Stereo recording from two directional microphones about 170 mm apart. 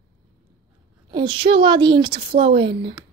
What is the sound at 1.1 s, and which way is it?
A woman's voice, 30° right (ahead or behind).